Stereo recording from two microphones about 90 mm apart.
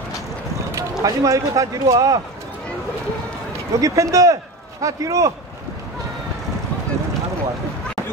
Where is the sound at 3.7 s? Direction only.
40° right (ahead or behind).